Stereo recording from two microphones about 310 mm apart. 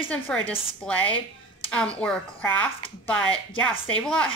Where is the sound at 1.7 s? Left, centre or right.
Centre.